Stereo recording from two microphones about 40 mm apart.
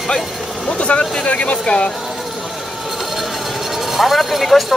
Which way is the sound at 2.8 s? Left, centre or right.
Centre.